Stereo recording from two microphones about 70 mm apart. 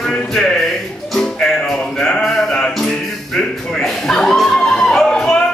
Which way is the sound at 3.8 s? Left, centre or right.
Centre.